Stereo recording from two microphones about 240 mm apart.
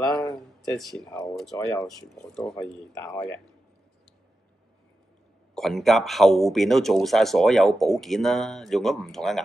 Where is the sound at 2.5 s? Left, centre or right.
Centre.